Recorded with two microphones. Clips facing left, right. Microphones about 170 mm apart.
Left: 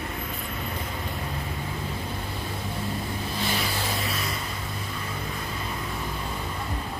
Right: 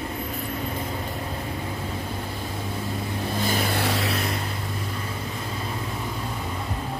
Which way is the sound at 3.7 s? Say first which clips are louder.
Right 5 dB; 75° right (ahead or behind).